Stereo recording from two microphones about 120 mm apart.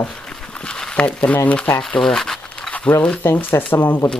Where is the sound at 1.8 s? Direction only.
5° left (ahead or behind).